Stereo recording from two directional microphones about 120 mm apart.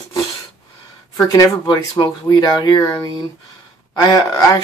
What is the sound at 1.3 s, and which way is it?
Speech, 30° left (ahead or behind).